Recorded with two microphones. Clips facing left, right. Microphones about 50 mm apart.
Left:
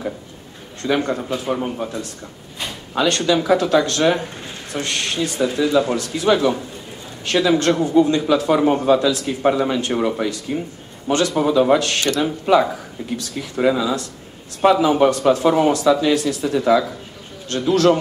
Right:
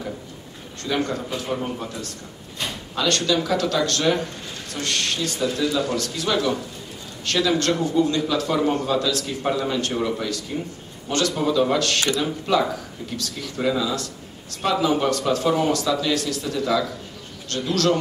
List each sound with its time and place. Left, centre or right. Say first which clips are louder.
0.8 s speech: left 5 dB; centre
3.0 s speech: left 4 dB; left